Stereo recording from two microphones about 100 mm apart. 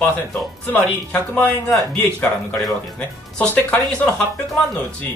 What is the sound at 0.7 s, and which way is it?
Speech, 10° left (ahead or behind).